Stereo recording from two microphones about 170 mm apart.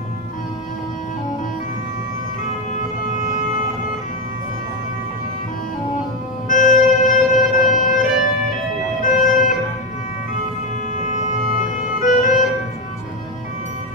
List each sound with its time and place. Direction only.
6.5 s music: 50° left (ahead or behind)
9.0 s emergency vehicle: 50° left (ahead or behind)
11.0 s music: 45° left (ahead or behind)